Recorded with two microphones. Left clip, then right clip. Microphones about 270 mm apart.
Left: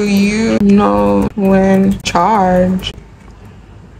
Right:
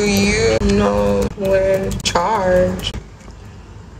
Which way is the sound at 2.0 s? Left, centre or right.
Left.